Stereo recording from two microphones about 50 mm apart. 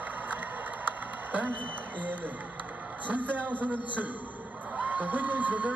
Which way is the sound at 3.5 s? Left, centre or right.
Left.